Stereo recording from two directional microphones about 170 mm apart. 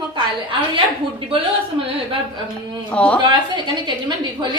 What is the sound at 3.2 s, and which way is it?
Speech, 30° right (ahead or behind).